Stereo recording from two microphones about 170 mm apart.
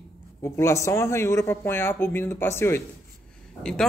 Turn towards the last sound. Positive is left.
turn(degrees=5)  # may be behind; listen again after turning